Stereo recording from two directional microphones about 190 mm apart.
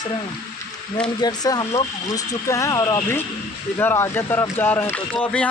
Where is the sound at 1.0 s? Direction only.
20° left (ahead or behind).